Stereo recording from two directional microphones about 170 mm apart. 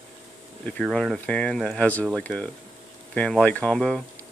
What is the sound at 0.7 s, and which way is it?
Speech, 5° left (ahead or behind).